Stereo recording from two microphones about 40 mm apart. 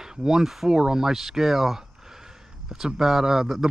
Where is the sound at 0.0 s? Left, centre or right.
Centre.